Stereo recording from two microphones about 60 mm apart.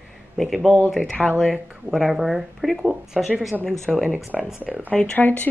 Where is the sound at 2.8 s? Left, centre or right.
Centre.